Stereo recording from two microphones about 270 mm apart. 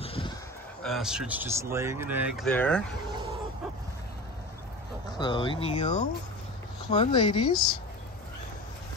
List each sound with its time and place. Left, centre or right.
0.0 s a sound: left
0.8 s speech: centre
5.2 s speech: centre